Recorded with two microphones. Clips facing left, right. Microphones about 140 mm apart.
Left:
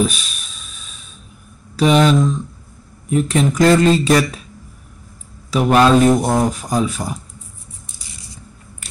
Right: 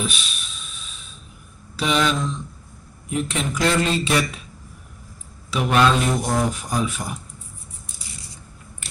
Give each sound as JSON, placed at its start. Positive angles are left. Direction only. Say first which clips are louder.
{"t": 0.0, "sound": "a sound", "louder": "left 9 dB", "side_deg": 40}
{"t": 1.8, "sound": "speech", "louder": "left 8 dB", "side_deg": 40}
{"t": 5.5, "sound": "speech", "louder": "left 6 dB", "side_deg": 40}